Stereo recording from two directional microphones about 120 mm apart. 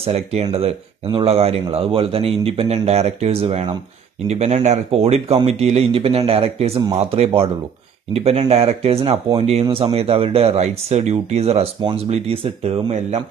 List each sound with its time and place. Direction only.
0.0 s speech: 65° right (ahead or behind)
10.9 s speech: 70° right (ahead or behind); by 12.9 s 50° right (ahead or behind)